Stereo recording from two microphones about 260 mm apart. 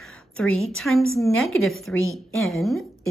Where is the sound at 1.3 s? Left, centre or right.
Left.